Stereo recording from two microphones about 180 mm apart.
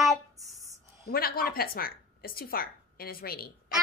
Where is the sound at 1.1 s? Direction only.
55° left (ahead or behind).